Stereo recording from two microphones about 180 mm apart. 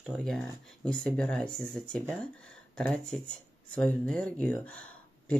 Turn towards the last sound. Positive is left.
turn(degrees=5)  # may be behind; listen again after turning